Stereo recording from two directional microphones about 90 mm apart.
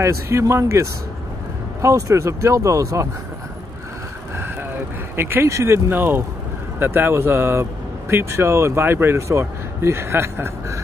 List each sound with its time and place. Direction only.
0.0 s speech: 30° right (ahead or behind)
5.1 s speech: 25° right (ahead or behind)